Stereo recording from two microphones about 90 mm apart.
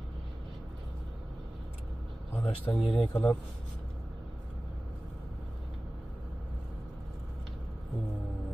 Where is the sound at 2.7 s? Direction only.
10° left (ahead or behind).